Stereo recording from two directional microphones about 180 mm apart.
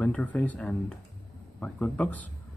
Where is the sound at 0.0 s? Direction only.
5° left (ahead or behind).